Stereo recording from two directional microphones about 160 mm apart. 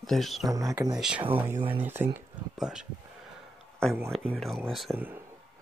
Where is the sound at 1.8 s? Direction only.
15° right (ahead or behind).